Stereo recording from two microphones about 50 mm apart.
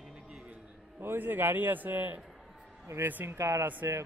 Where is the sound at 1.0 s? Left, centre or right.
Right.